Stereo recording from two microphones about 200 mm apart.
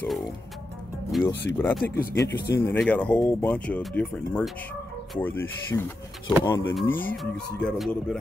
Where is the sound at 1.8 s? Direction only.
50° left (ahead or behind).